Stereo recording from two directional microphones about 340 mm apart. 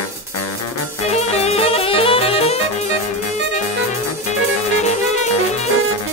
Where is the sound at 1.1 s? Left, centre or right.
Centre.